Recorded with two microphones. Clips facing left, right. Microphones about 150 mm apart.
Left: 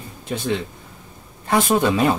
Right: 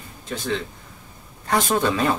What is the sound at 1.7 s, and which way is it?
Speech, 15° left (ahead or behind).